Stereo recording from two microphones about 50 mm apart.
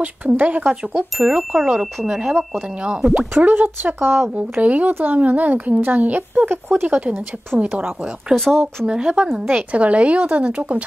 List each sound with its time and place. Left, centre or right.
0.0 s speech: right
1.2 s speech: centre
3.3 s a woman's voice: right
4.6 s a woman's voice: right
7.0 s speech: right
8.3 s speech: centre